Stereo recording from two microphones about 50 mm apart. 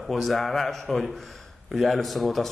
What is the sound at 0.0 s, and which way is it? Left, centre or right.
A man's voice, centre.